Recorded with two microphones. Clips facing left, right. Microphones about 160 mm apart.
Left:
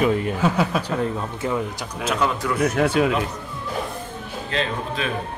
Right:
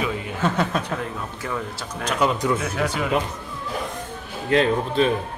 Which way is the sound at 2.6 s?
60° left (ahead or behind).